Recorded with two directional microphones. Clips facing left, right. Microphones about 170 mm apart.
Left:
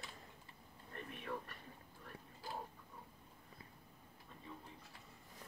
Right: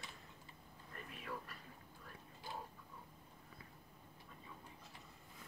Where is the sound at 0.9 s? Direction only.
30° left (ahead or behind).